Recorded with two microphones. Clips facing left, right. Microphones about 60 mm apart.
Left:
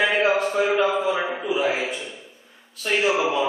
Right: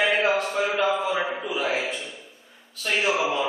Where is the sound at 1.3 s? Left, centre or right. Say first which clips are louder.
Left 3 dB; centre.